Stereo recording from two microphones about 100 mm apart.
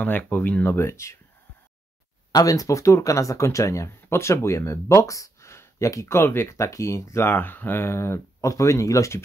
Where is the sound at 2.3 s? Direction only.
35° left (ahead or behind).